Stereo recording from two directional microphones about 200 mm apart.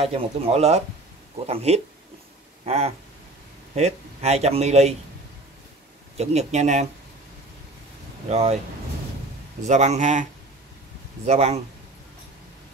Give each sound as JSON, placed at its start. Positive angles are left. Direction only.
{"t": 0.0, "sound": "a man's voice", "side_deg": -30}
{"t": 2.6, "sound": "a sound", "side_deg": -30}
{"t": 3.7, "sound": "a man's voice", "side_deg": -35}
{"t": 6.1, "sound": "a man's voice", "side_deg": -35}
{"t": 8.3, "sound": "a man's voice", "side_deg": -30}
{"t": 9.7, "sound": "a man's voice", "side_deg": -35}
{"t": 11.2, "sound": "a man's voice", "side_deg": -30}